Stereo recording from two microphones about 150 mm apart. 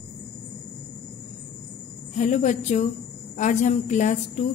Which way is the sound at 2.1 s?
55° left (ahead or behind).